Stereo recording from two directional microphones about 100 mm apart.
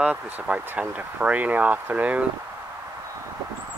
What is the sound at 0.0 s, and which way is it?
Speech, 15° right (ahead or behind).